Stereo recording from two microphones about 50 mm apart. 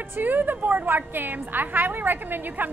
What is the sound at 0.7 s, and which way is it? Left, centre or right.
A woman's voice, right.